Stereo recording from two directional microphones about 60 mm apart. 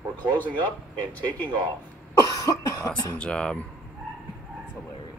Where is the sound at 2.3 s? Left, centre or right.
Left.